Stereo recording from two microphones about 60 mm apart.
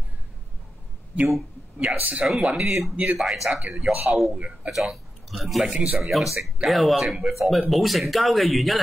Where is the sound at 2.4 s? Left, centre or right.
Centre.